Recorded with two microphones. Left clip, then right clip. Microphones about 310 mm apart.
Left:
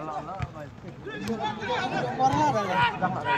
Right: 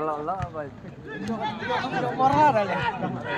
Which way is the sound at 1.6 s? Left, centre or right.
Centre.